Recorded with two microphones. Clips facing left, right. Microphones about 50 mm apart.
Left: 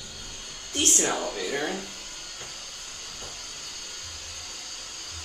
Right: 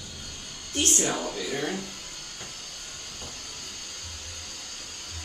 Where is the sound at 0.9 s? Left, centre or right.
Centre.